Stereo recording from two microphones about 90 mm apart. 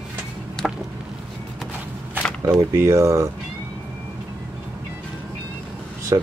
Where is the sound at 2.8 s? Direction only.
30° right (ahead or behind).